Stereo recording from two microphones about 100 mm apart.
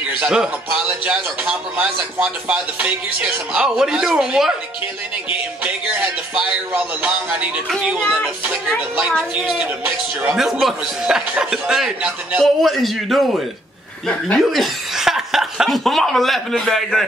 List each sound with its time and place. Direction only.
0.2 s speech: 5° right (ahead or behind)
5.6 s a man's voice: 10° right (ahead or behind)